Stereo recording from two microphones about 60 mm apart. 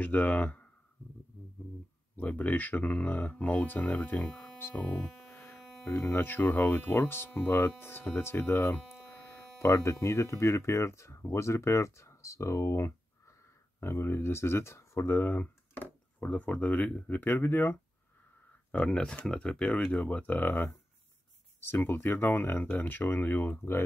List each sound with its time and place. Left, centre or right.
0.0 s speech: left
2.1 s speech: left
4.2 s speech: centre
5.3 s mains hum: left
5.9 s speech: left
9.6 s speech: left
16.2 s speech: left
17.3 s speech: left
18.7 s speech: centre; by 23.8 s left